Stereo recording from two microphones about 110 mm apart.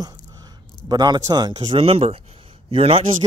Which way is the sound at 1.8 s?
60° right (ahead or behind).